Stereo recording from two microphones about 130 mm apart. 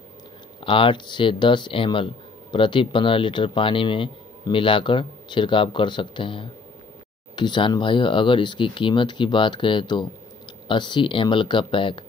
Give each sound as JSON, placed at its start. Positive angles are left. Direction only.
{"t": 0.6, "sound": "speech", "side_deg": 40}